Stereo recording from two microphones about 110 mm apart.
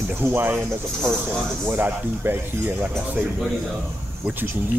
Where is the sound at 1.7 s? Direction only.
20° right (ahead or behind).